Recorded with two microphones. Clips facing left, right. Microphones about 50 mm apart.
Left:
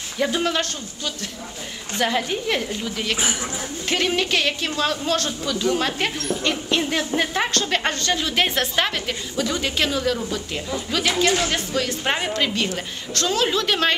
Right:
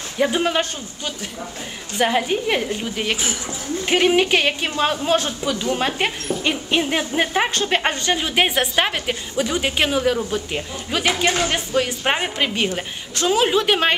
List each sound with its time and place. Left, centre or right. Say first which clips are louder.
0.2 s a woman's voice: right 3 dB; centre